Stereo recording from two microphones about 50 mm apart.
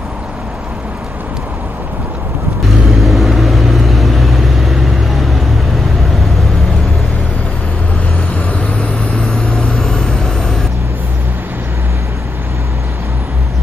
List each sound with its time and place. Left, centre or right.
2.6 s vehicle: centre
8.4 s vehicle: left
9.5 s vehicle: centre